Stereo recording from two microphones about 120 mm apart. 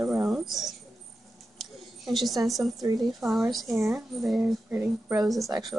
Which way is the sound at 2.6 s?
30° right (ahead or behind).